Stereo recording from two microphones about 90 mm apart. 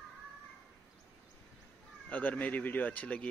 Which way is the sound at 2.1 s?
15° left (ahead or behind).